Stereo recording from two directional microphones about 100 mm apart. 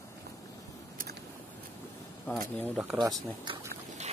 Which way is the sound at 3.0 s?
40° right (ahead or behind).